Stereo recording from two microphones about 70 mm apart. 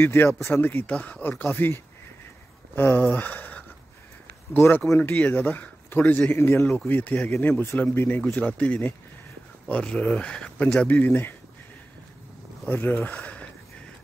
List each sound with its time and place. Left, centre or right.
0.0 s speech: left
6.6 s speech: centre
6.9 s speech: left
8.4 s speech: left
12.6 s speech: left